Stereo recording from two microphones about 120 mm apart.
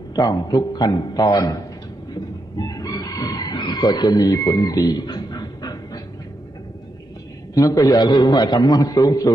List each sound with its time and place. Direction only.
0.1 s a man's voice: 30° left (ahead or behind)
2.1 s chicken: 35° left (ahead or behind)
7.5 s a man's voice: 30° left (ahead or behind)